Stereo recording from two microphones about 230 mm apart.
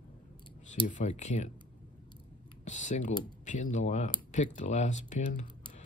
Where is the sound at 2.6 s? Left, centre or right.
Left.